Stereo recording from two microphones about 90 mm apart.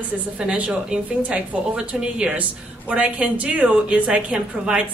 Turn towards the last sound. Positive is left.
turn(degrees=-10)  # may be behind; listen again after turning